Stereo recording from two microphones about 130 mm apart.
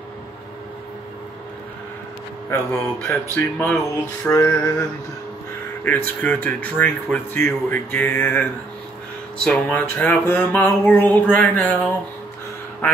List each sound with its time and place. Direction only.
2.5 s speech: 15° left (ahead or behind)
3.7 s a sound: 25° left (ahead or behind)
5.9 s speech: 15° left (ahead or behind)